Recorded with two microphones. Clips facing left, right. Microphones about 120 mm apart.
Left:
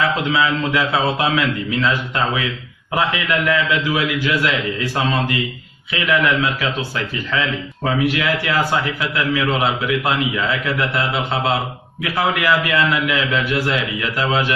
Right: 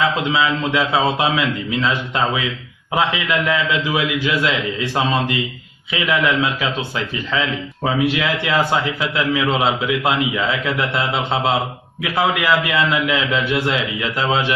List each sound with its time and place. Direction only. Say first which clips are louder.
0.3 s a man's voice: even; 25° right (ahead or behind)
7.8 s a man's voice: even; 20° right (ahead or behind)